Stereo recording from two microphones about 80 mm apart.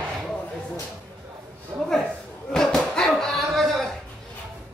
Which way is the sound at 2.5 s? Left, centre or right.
Centre.